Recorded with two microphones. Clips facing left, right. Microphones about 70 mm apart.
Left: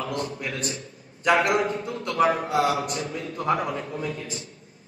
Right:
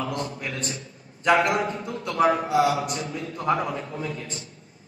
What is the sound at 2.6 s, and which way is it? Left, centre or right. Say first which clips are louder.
Speech: right 1 dB; left.